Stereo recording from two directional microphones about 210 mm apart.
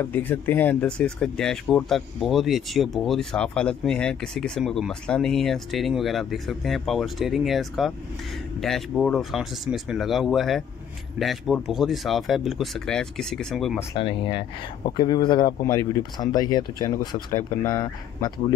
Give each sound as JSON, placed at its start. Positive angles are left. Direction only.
{"t": 0.0, "sound": "speech", "side_deg": 10}
{"t": 13.9, "sound": "speech", "side_deg": 25}